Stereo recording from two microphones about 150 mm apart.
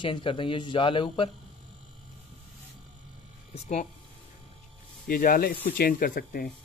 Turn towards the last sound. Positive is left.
turn(degrees=75)  # may be behind; listen again after turning